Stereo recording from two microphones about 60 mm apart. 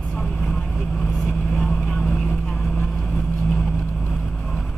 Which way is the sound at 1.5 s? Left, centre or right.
Centre.